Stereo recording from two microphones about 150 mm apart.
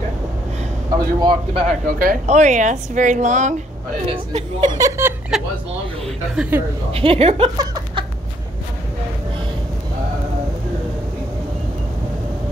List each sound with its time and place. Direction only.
0.9 s a man's voice: 30° right (ahead or behind)
1.9 s speech: 70° right (ahead or behind)
2.2 s speech: 50° right (ahead or behind)
4.7 s speech: 20° right (ahead or behind)
6.3 s a woman's voice: 5° right (ahead or behind)
6.9 s speech: 40° right (ahead or behind)